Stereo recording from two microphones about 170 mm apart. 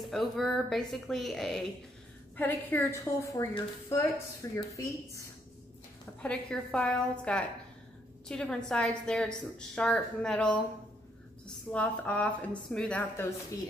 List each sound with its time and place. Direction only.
0.0 s a woman's voice: centre (ahead or behind); by 4.6 s 15° left (ahead or behind)
6.2 s a woman's voice: 5° left (ahead or behind)